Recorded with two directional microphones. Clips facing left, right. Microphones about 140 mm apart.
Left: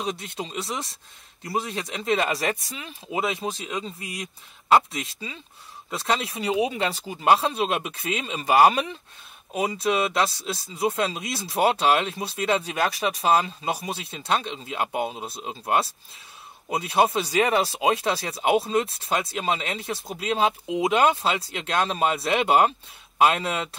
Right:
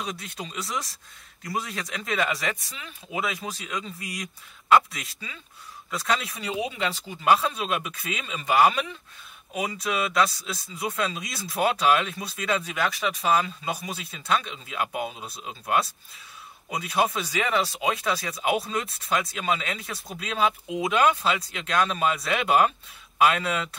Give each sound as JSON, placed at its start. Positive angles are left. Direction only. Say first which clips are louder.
{"t": 0.0, "sound": "speech", "louder": "left 4 dB", "side_deg": 30}